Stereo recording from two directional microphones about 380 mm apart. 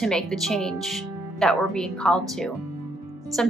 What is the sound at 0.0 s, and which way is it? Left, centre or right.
Speech, centre.